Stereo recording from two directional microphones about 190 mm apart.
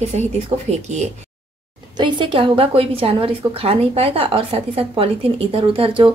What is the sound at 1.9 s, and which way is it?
A woman's voice, 25° right (ahead or behind).